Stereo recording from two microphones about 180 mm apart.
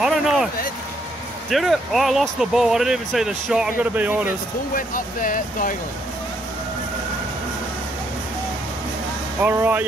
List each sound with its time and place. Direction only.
0.0 s vehicle: centre (ahead or behind)
1.5 s speech: centre (ahead or behind)
4.7 s speech: 50° left (ahead or behind)
9.4 s speech: 10° right (ahead or behind)